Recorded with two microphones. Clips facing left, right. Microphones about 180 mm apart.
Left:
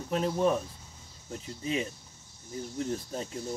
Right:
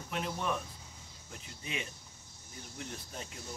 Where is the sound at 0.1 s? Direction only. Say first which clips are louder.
Left 9 dB; 35° left (ahead or behind).